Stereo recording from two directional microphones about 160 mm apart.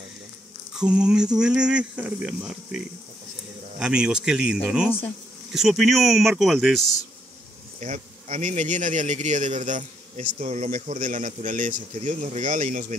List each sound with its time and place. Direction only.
0.7 s speech: 5° right (ahead or behind)
3.8 s speech: 5° right (ahead or behind)
7.8 s speech: 50° right (ahead or behind)